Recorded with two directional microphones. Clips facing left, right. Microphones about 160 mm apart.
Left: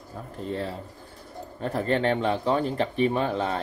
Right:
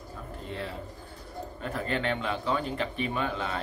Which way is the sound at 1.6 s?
35° left (ahead or behind).